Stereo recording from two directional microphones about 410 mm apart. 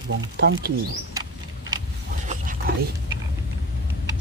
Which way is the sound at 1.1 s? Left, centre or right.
Centre.